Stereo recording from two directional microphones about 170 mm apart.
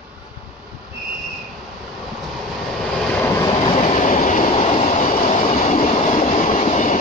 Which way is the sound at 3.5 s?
30° left (ahead or behind).